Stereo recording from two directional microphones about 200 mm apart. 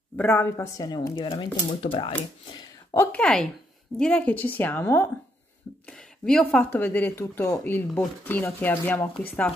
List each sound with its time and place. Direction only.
0.2 s a woman's voice: 10° left (ahead or behind)